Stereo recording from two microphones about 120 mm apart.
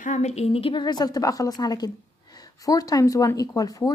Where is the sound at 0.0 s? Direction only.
75° left (ahead or behind).